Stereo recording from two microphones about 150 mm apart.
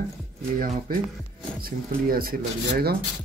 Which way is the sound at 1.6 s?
75° right (ahead or behind).